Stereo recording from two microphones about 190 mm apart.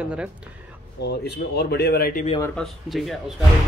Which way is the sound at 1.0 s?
60° left (ahead or behind).